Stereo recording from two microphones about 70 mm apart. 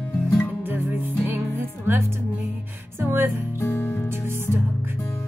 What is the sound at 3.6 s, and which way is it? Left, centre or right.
Music, left.